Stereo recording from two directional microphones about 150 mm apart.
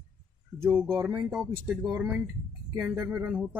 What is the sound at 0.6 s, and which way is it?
Speech, 5° left (ahead or behind).